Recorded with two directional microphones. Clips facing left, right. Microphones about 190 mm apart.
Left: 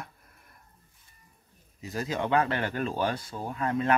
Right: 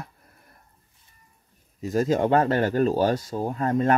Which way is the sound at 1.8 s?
45° right (ahead or behind).